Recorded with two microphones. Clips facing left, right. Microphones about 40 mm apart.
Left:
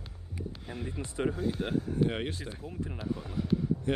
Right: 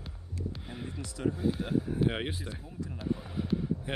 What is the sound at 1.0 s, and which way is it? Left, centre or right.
Speech, left.